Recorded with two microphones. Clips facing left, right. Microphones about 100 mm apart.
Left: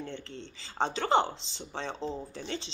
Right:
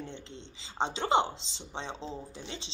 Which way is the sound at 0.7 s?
20° right (ahead or behind).